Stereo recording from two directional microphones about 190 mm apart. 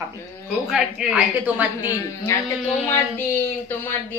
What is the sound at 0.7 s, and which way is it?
A woman's voice, 5° right (ahead or behind).